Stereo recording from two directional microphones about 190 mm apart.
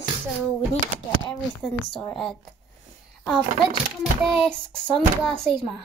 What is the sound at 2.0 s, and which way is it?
Speech, 5° left (ahead or behind).